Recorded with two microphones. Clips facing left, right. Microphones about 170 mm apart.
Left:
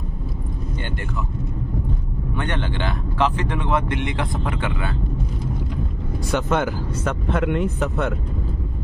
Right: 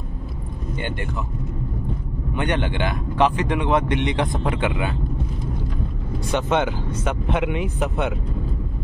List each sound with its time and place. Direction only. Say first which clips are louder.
2.3 s speech: right 3 dB; 15° right (ahead or behind)
6.5 s speech: even; 5° left (ahead or behind)